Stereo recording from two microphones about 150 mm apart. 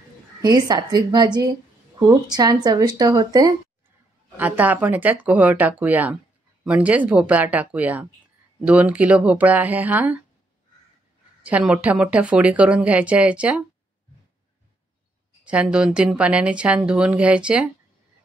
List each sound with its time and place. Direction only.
0.4 s speech: 30° right (ahead or behind)
4.4 s speech: 10° right (ahead or behind)
11.4 s speech: 5° right (ahead or behind)
15.4 s speech: 10° right (ahead or behind)